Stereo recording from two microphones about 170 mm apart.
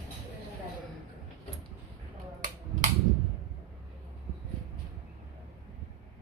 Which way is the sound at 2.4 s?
45° right (ahead or behind).